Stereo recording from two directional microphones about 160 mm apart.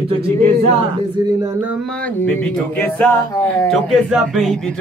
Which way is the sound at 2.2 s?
10° left (ahead or behind).